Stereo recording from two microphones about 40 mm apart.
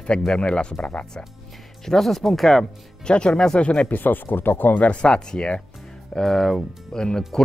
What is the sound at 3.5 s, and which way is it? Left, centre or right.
Speech, left.